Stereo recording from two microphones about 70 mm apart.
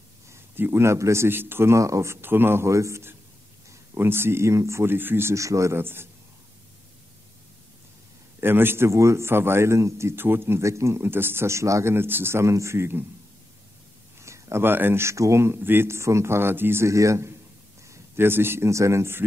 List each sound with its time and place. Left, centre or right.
0.3 s a man's voice: right
1.8 s speech: right
2.2 s a man's voice: right
5.3 s speech: right
5.8 s a man's voice: right
8.4 s a man's voice: right
14.2 s a man's voice: right
16.8 s speech: right
17.8 s speech: right